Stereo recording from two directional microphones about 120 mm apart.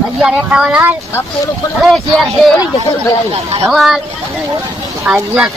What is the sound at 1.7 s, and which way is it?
Speech, centre (ahead or behind).